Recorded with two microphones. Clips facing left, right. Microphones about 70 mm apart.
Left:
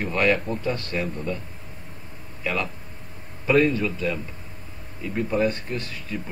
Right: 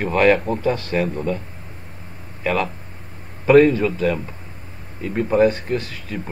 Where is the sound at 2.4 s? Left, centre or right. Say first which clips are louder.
Right 6 dB; right.